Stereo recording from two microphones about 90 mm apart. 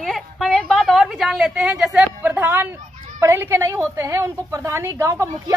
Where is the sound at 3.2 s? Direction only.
30° right (ahead or behind).